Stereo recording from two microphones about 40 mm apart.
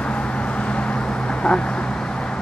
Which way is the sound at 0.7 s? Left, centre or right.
Left.